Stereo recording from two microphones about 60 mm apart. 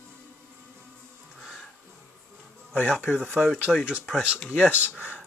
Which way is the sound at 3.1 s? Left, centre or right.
Right.